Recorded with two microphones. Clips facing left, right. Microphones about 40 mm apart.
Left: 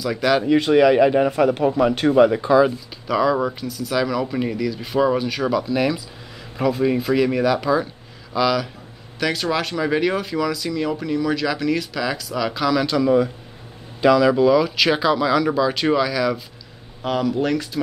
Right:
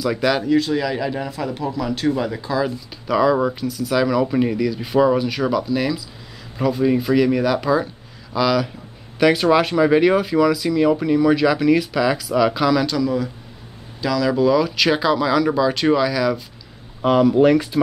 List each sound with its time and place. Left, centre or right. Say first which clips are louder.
0.0 s speech: even; centre
0.6 s speech: left 6 dB; left
3.1 s speech: right 2 dB; centre
9.2 s speech: right 7 dB; centre
13.0 s speech: left 4 dB; left; by 16.4 s centre
17.0 s speech: right 7 dB; centre